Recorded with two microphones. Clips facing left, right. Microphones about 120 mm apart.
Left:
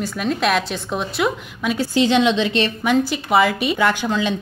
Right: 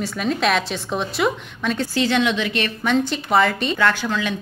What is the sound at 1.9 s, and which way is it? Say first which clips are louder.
Speech: left 5 dB; 20° left (ahead or behind).